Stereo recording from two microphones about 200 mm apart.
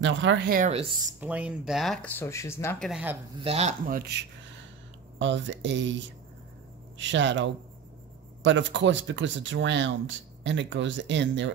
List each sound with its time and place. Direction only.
0.0 s speech: 65° right (ahead or behind)
0.5 s speech: 40° right (ahead or behind)
0.7 s speech: 25° right (ahead or behind)
1.2 s speech: 5° right (ahead or behind); by 2.9 s 10° left (ahead or behind)
2.9 s speech: 10° right (ahead or behind)
3.4 s speech: 30° right (ahead or behind); by 4.3 s 55° right (ahead or behind)
5.2 s speech: 65° right (ahead or behind)